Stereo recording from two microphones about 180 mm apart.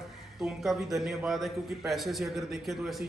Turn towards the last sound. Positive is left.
turn(degrees=0)  # may be behind; listen again after turning